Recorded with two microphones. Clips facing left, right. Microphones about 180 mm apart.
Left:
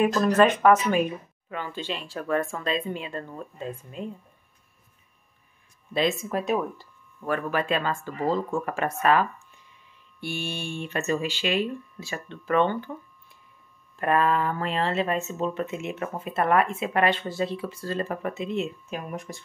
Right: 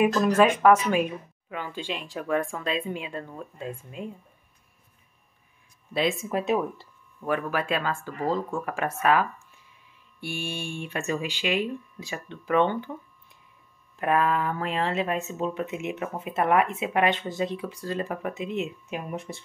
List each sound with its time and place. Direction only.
0.1 s speech: 5° right (ahead or behind)
5.9 s speech: 10° right (ahead or behind)
6.3 s speech: 25° right (ahead or behind)
7.2 s speech: 10° right (ahead or behind)
8.7 s speech: 10° right (ahead or behind)
13.9 s speech: 10° right (ahead or behind); by 19.4 s 25° right (ahead or behind)